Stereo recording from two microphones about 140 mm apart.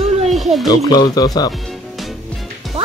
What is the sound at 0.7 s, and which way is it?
Speech, 30° left (ahead or behind).